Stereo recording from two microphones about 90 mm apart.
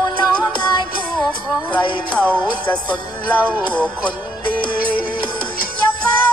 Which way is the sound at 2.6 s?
20° left (ahead or behind).